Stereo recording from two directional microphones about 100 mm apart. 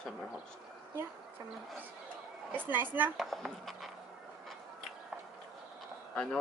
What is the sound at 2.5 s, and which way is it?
Speech, 20° right (ahead or behind).